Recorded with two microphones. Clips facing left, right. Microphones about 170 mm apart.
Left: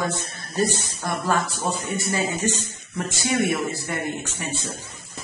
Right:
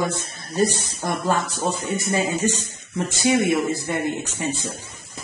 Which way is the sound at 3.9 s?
20° right (ahead or behind).